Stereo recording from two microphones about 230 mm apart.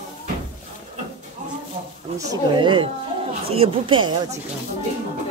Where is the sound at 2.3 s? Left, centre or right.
Right.